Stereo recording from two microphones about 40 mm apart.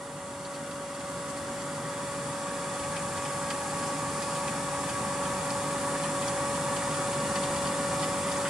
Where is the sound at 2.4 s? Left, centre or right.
Centre.